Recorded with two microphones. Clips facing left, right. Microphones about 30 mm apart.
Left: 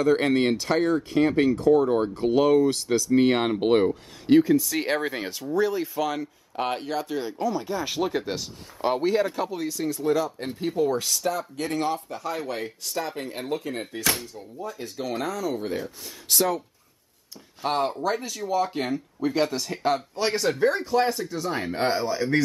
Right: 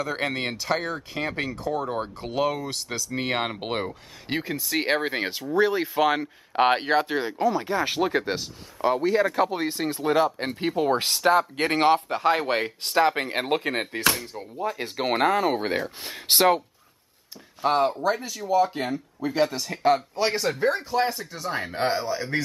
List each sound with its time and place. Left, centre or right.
0.0 s speech: centre
4.3 s speech: right
9.0 s speech: centre
9.5 s speech: right
17.6 s speech: centre